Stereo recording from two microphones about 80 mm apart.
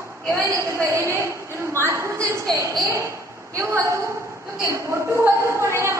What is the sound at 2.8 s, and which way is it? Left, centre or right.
Speech, right.